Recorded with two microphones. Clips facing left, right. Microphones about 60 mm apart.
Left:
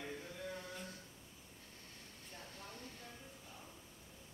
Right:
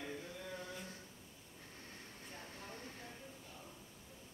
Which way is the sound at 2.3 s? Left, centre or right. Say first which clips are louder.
Right 1 dB; right.